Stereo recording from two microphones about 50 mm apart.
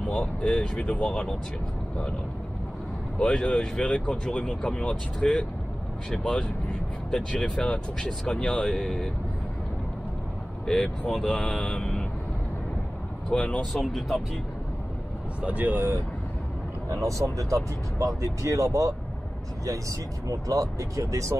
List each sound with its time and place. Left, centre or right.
0.0 s speech: left
3.2 s speech: centre
8.7 s speech: centre
10.7 s speech: centre
13.3 s speech: left
13.7 s speech: centre
15.4 s speech: right
17.0 s speech: right
20.4 s speech: right